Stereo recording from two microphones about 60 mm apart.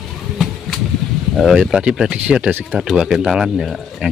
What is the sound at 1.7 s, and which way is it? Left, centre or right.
Speech, centre.